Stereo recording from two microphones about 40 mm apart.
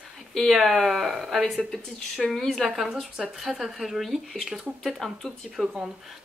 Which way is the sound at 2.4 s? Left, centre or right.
Centre.